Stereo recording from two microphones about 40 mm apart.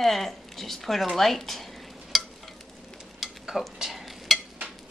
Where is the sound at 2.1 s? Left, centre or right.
Centre.